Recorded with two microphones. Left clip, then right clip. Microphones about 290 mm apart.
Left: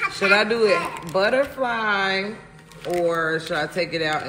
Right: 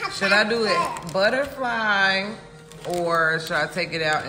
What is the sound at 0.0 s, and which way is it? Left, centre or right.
Speech, centre.